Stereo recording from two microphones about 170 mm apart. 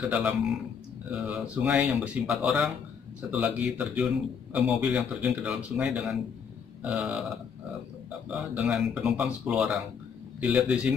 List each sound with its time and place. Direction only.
0.1 s a man's voice: 5° right (ahead or behind)
6.8 s burping: 5° right (ahead or behind)
8.3 s a man's voice: 5° right (ahead or behind)